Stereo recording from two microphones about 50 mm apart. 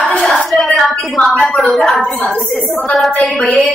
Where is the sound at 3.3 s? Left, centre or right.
Centre.